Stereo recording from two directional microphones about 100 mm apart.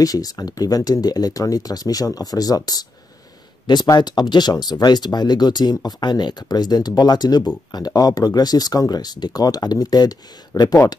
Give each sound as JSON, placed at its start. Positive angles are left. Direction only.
{"t": 0.0, "sound": "speech", "side_deg": 40}